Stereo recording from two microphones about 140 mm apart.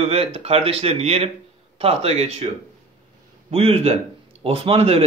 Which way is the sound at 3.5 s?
45° right (ahead or behind).